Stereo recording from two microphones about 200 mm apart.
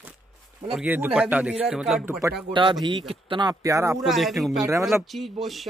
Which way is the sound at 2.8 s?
25° right (ahead or behind).